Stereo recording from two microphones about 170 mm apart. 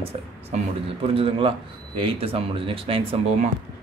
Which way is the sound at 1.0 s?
30° right (ahead or behind).